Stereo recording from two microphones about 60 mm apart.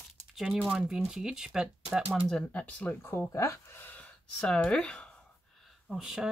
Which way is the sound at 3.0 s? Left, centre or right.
Left.